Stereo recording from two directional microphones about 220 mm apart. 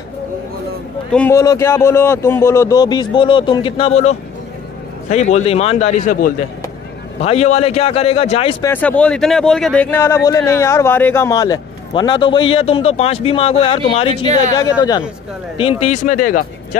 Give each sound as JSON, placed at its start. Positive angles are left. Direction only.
{"t": 1.1, "sound": "a man's voice", "side_deg": 10}
{"t": 8.6, "sound": "speech", "side_deg": 5}
{"t": 14.2, "sound": "speech", "side_deg": -30}
{"t": 14.6, "sound": "a man's voice", "side_deg": 20}
{"t": 15.8, "sound": "a man's voice", "side_deg": 30}